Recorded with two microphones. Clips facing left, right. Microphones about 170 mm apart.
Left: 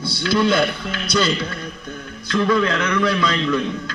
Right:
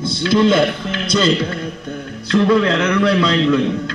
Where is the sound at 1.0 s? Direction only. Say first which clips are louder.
Right 4 dB; 25° right (ahead or behind).